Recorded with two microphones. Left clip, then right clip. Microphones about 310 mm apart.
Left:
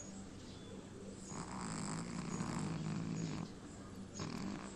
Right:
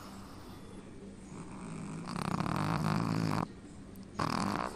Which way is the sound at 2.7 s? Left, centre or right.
Right.